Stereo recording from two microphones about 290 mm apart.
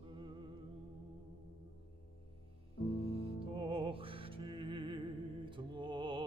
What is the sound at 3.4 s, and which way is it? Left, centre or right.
Music, centre.